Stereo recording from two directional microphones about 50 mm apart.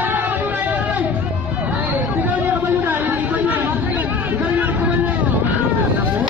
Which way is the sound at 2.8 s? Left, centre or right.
Right.